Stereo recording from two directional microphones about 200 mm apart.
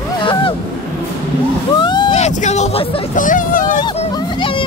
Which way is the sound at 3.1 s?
40° left (ahead or behind).